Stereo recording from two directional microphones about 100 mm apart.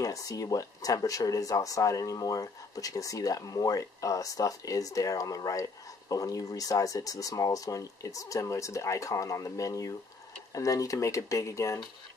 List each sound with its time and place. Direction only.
0.0 s speech: 35° left (ahead or behind)